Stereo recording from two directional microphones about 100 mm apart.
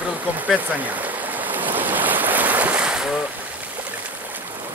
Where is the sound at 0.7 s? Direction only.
15° right (ahead or behind).